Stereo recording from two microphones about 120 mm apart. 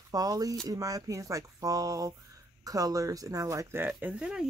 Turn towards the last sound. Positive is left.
turn(degrees=-5)  # may be behind; listen again after turning